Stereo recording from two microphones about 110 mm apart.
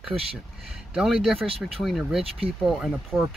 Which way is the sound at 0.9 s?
5° right (ahead or behind).